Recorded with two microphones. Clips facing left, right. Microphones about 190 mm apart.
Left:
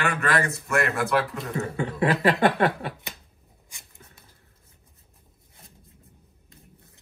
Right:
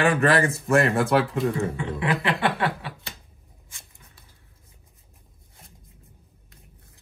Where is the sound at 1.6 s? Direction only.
40° left (ahead or behind).